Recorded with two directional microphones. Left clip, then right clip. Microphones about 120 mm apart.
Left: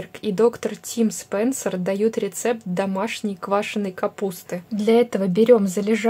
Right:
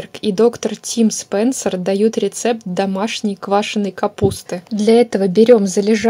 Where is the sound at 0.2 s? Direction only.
35° right (ahead or behind).